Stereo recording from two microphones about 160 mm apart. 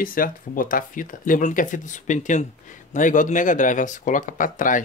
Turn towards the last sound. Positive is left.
turn(degrees=55)  # may be behind; listen again after turning